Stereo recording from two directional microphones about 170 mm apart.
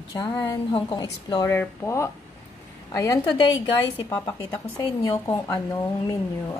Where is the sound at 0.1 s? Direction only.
25° left (ahead or behind).